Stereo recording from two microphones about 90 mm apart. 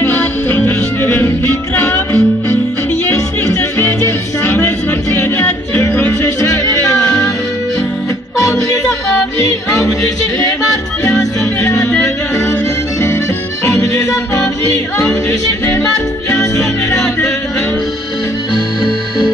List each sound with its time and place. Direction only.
0.0 s music: 25° left (ahead or behind)
6.4 s music: 35° left (ahead or behind)
16.9 s music: 5° left (ahead or behind)